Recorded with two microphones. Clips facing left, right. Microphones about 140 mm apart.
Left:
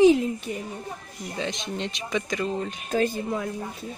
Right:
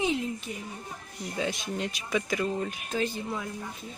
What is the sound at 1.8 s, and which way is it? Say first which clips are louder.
Speech: left 1 dB; 5° right (ahead or behind).